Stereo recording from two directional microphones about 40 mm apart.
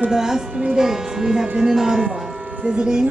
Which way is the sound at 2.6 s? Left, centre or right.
Right.